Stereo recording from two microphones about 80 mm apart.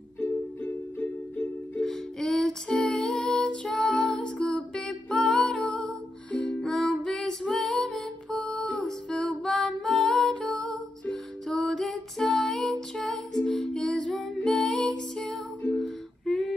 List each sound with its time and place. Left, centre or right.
0.2 s music: centre
1.8 s music: centre